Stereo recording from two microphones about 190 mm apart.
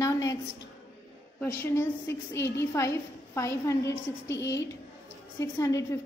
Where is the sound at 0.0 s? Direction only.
20° left (ahead or behind).